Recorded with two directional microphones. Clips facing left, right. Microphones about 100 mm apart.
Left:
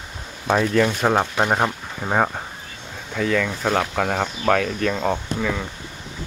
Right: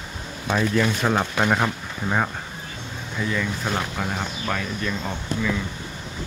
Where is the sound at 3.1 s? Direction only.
75° left (ahead or behind).